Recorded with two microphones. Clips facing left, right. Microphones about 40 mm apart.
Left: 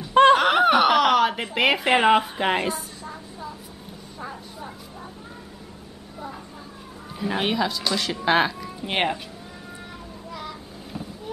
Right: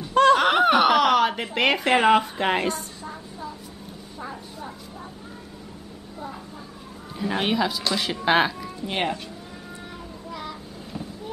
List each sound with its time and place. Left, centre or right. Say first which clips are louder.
0.1 s snicker: left 2 dB; left
0.4 s a sound: even; centre
7.2 s speech: even; centre
8.8 s speech: left 2 dB; left
10.3 s child singing: right 1 dB; centre